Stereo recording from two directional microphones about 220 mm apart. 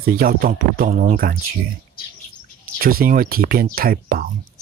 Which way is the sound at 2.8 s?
40° right (ahead or behind).